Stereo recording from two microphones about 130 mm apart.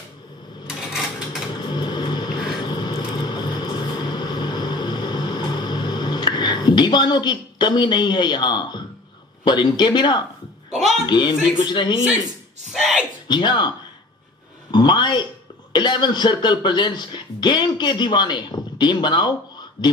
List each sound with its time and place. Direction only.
1.5 s vehicle: 35° left (ahead or behind)
9.4 s speech: 35° left (ahead or behind)
12.7 s speech: centre (ahead or behind)
13.3 s speech: 35° left (ahead or behind)
14.7 s speech: 35° left (ahead or behind)